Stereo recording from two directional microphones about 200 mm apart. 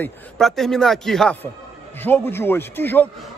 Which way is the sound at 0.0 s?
Centre (ahead or behind).